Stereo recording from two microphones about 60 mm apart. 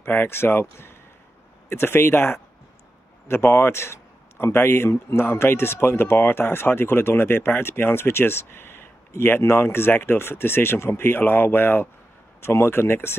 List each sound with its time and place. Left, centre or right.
0.1 s speech: left